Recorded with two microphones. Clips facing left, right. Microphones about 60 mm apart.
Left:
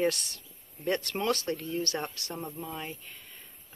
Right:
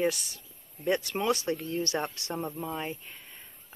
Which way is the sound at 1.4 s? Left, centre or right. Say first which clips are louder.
Right 1 dB; centre.